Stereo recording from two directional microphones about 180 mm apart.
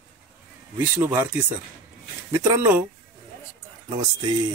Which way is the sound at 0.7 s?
15° right (ahead or behind).